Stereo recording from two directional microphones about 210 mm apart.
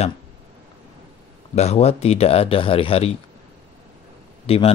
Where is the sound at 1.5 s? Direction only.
30° left (ahead or behind).